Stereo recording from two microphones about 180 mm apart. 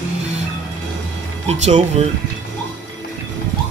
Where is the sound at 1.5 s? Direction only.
35° right (ahead or behind).